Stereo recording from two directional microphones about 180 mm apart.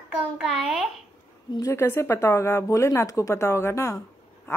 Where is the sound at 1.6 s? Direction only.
15° left (ahead or behind).